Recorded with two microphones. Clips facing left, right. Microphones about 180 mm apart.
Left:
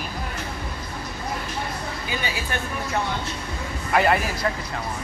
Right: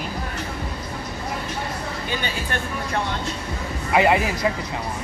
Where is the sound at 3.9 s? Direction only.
15° right (ahead or behind).